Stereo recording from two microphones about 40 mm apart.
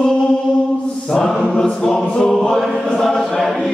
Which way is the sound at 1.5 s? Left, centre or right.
Centre.